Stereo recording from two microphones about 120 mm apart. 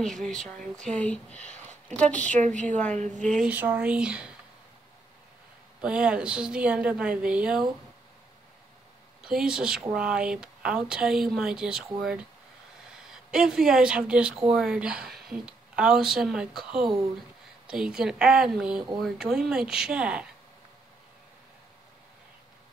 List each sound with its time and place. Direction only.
0.0 s speech: 5° left (ahead or behind)
2.3 s a woman's voice: 90° right
3.2 s speech: 5° left (ahead or behind)
3.4 s a woman's voice: 10° right (ahead or behind)
5.8 s a woman's voice: 10° right (ahead or behind)
9.2 s speech: 5° right (ahead or behind)